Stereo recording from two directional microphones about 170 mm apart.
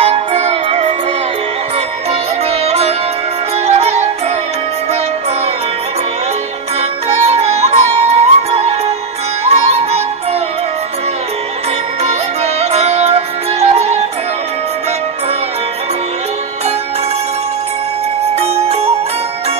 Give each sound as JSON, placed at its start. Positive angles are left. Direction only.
{"t": 0.0, "sound": "music", "side_deg": -40}
{"t": 2.6, "sound": "music", "side_deg": -35}
{"t": 7.2, "sound": "music", "side_deg": -40}
{"t": 12.0, "sound": "music", "side_deg": -40}
{"t": 18.2, "sound": "music", "side_deg": -40}